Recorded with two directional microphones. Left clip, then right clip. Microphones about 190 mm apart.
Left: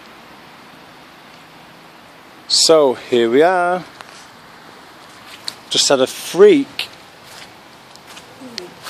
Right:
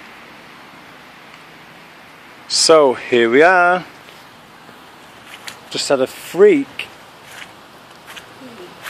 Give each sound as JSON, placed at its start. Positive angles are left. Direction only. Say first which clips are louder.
{"t": 2.4, "sound": "speech", "louder": "right 1 dB", "side_deg": 5}
{"t": 5.7, "sound": "speech", "louder": "left 3 dB", "side_deg": 20}